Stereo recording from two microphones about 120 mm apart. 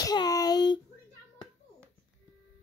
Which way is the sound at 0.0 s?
35° left (ahead or behind).